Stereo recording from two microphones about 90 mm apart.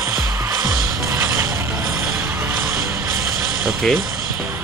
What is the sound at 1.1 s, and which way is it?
Mechanisms, 30° right (ahead or behind).